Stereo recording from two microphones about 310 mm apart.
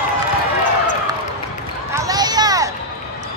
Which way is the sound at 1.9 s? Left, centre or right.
Centre.